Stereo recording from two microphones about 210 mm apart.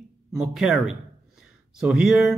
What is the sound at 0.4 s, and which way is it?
Speech, centre (ahead or behind).